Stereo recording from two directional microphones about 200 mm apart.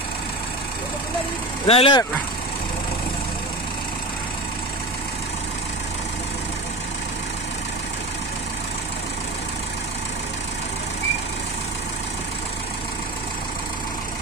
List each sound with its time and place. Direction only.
1.7 s speech: 25° left (ahead or behind)